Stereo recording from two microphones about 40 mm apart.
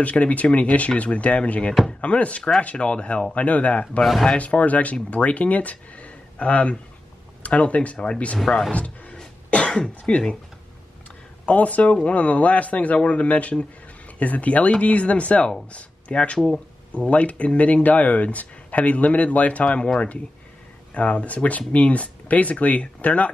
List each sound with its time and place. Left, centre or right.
0.0 s speech: left
4.0 s speech: centre
4.4 s speech: left
8.7 s a sound: left
9.8 s speech: left
11.4 s speech: left
20.9 s speech: left